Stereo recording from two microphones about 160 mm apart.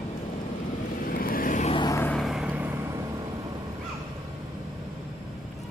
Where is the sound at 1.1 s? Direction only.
65° left (ahead or behind).